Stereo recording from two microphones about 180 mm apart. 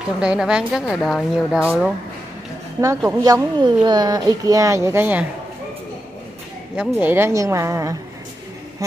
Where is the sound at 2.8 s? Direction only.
15° right (ahead or behind).